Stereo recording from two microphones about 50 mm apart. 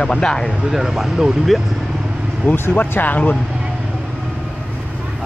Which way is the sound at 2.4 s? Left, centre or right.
Left.